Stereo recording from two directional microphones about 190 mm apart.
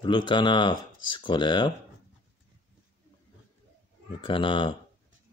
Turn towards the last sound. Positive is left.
turn(degrees=25)  # may be behind; listen again after turning